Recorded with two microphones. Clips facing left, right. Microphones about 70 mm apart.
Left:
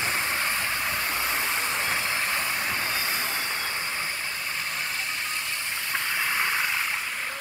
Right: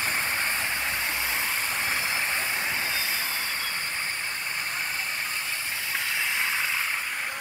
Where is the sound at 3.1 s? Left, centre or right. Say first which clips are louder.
Left 1 dB; left.